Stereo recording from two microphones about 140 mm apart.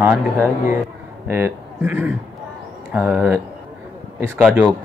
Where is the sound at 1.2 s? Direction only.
15° right (ahead or behind).